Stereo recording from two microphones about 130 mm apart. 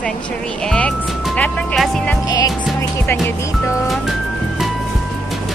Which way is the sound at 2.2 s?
30° left (ahead or behind).